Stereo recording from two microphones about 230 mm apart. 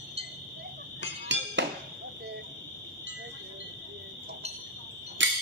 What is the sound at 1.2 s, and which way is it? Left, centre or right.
Music, right.